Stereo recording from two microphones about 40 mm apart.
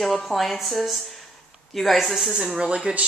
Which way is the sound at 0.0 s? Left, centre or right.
Centre.